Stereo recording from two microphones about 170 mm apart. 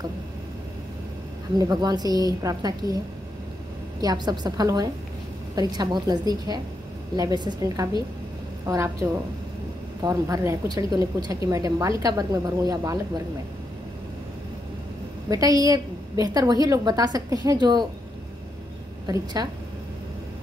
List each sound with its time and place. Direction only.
1.6 s a woman's voice: 25° right (ahead or behind)
4.0 s a woman's voice: 25° right (ahead or behind)
15.2 s a woman's voice: 20° right (ahead or behind)
19.0 s a woman's voice: 25° right (ahead or behind)